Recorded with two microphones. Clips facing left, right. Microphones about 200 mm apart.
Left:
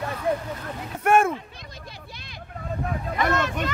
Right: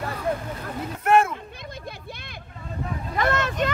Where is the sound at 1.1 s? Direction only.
45° left (ahead or behind).